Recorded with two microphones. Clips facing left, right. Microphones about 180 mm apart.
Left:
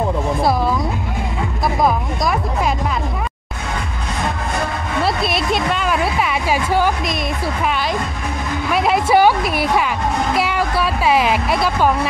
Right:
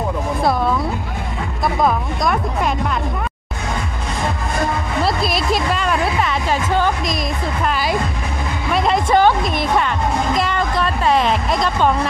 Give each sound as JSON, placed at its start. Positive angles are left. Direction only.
{"t": 0.4, "sound": "music", "side_deg": 5}
{"t": 5.0, "sound": "music", "side_deg": 0}
{"t": 8.7, "sound": "music", "side_deg": 5}